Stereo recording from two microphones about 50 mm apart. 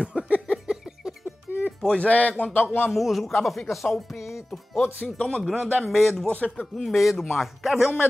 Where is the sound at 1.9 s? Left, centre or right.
Left.